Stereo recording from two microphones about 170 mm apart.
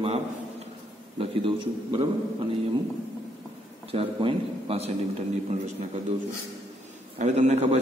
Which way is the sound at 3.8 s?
35° right (ahead or behind).